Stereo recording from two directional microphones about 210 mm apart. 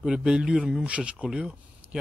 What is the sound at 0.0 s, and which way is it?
Speech, 5° right (ahead or behind).